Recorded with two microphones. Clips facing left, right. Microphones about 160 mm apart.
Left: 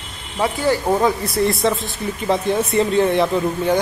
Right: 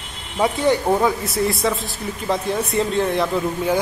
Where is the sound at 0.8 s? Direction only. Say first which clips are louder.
Left 1 dB; centre (ahead or behind).